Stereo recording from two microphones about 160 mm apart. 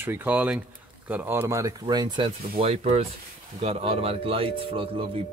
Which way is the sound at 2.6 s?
40° right (ahead or behind).